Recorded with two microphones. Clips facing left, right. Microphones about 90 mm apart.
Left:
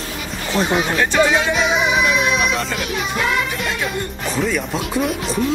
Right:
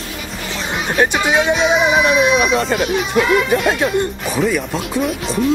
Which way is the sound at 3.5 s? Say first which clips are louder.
Right 8 dB; 50° right (ahead or behind).